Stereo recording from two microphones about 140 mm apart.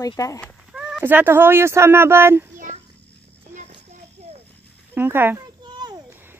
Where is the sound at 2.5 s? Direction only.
65° right (ahead or behind).